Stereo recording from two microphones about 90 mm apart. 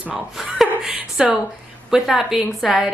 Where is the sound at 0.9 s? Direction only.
15° right (ahead or behind).